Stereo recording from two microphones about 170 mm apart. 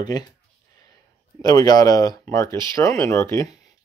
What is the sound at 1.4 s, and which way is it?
Speech, 20° left (ahead or behind).